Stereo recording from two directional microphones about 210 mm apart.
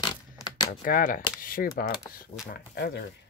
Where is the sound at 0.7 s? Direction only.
40° left (ahead or behind).